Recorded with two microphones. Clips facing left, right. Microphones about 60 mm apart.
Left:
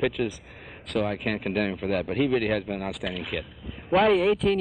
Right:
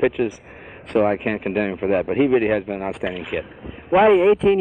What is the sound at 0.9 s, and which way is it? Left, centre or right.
Speech, right.